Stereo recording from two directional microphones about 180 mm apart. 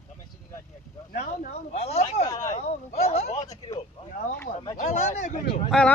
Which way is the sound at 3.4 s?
20° left (ahead or behind).